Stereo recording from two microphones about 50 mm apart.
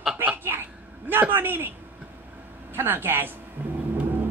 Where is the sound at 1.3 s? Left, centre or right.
Right.